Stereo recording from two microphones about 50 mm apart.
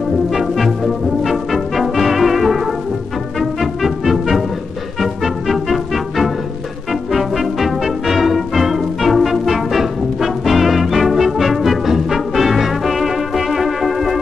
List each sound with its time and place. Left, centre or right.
0.3 s music: centre